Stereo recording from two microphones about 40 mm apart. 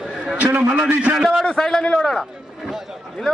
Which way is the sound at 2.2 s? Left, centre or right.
Centre.